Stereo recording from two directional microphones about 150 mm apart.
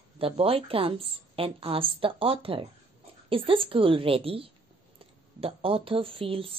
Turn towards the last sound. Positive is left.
turn(degrees=-40)  # may be behind; listen again after turning